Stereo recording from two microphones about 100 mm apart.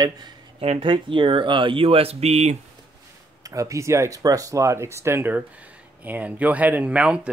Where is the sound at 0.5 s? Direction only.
85° right.